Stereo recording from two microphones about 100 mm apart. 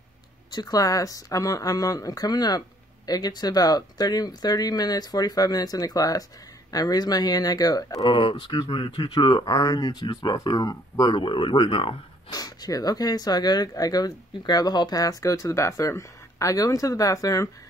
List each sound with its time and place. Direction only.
0.5 s speech: 40° left (ahead or behind)
8.1 s speech: 55° left (ahead or behind)
12.3 s speech: 40° left (ahead or behind)